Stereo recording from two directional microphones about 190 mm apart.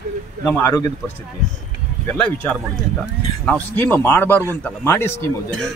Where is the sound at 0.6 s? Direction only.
15° left (ahead or behind).